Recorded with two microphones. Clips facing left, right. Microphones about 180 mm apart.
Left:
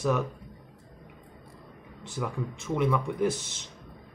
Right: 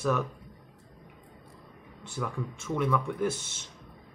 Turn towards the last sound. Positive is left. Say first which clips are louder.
# left 2 dB
turn(degrees=15)  # may be behind; listen again after turning